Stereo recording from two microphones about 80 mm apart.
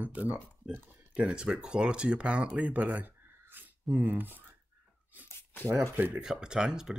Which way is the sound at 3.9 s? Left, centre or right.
Right.